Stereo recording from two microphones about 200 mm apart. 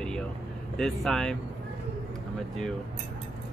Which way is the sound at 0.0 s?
5° left (ahead or behind).